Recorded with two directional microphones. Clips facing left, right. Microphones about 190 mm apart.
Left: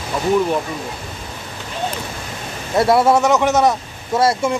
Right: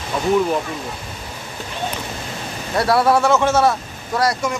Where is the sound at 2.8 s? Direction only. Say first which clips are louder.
Left 2 dB; 25° left (ahead or behind).